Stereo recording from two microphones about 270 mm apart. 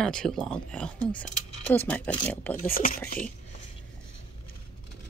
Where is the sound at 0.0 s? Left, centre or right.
Centre.